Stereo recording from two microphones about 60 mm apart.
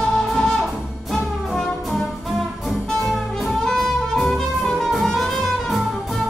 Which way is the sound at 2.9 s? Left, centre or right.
Centre.